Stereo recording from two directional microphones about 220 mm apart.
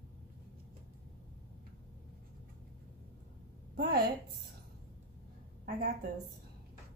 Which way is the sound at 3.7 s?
45° right (ahead or behind).